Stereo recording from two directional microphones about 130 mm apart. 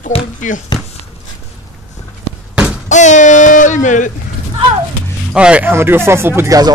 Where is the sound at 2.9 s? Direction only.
70° left (ahead or behind).